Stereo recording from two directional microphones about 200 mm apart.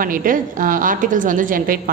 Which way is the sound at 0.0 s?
45° right (ahead or behind).